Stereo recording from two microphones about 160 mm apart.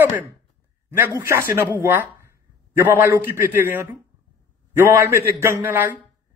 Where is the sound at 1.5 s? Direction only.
15° right (ahead or behind).